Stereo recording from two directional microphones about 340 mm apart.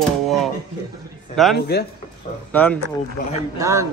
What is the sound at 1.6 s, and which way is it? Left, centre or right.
Speech, left.